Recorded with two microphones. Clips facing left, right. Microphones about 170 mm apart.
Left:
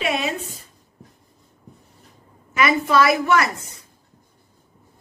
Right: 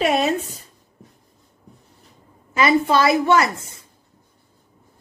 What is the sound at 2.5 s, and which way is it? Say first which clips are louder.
A woman's voice: right 2 dB; 30° right (ahead or behind).